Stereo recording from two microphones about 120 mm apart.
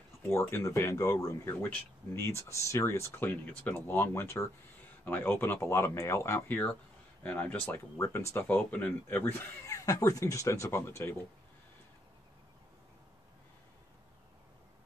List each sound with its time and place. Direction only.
0.5 s speech: 20° left (ahead or behind)
8.0 s speech: 25° left (ahead or behind)